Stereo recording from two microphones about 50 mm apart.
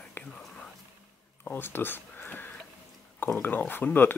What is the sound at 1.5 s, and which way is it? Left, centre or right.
Speech, left.